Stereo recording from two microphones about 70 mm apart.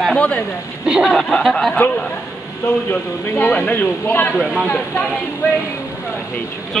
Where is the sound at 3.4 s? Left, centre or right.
Left.